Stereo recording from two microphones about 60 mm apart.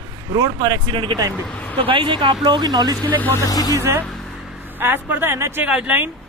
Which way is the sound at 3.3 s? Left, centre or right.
Left.